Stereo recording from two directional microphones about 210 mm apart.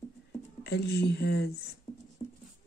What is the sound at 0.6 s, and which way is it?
Speech, 50° left (ahead or behind).